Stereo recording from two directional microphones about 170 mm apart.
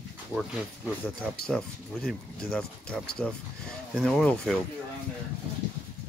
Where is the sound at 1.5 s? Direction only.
Centre (ahead or behind).